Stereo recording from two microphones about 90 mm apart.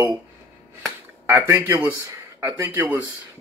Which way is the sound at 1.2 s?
25° right (ahead or behind).